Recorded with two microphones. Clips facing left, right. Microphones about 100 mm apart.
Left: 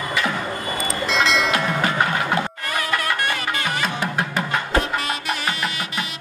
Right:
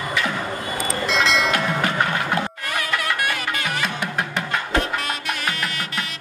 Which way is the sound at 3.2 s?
5° right (ahead or behind).